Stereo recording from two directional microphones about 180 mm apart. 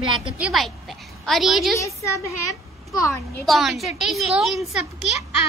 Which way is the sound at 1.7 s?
15° left (ahead or behind).